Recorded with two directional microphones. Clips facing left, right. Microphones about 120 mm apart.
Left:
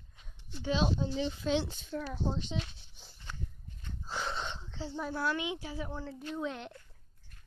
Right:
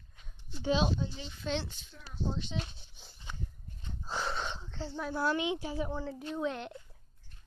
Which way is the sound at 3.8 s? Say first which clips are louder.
Right 2 dB; 15° right (ahead or behind).